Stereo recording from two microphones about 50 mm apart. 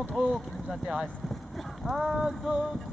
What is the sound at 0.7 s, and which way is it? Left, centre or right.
Speech, centre.